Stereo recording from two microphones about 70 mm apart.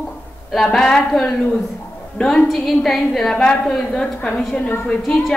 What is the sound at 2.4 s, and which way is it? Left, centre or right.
A woman's voice, centre.